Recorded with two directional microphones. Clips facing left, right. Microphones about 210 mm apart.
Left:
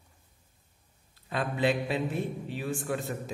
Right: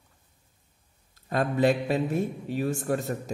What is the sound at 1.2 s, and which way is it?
A man's voice, 45° right (ahead or behind).